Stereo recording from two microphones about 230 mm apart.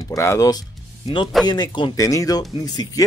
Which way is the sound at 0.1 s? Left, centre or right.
Centre.